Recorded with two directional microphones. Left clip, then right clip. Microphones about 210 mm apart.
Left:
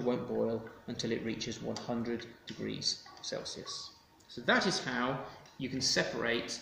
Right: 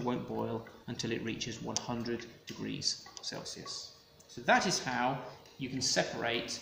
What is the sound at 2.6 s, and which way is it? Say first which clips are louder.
Speech: left 1 dB; 45° right (ahead or behind).